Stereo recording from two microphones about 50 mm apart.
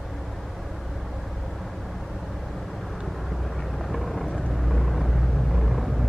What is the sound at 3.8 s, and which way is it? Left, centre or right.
Vehicle, centre.